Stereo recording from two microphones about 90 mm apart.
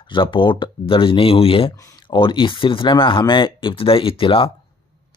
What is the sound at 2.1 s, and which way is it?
Speech, 65° left (ahead or behind).